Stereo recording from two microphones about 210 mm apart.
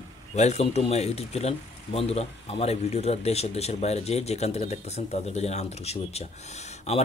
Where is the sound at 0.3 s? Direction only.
30° left (ahead or behind).